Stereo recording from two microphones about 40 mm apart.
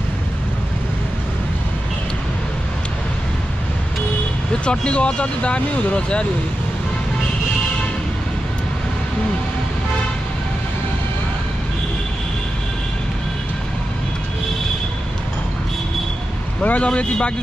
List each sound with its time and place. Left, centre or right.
4.6 s speech: left
16.6 s speech: left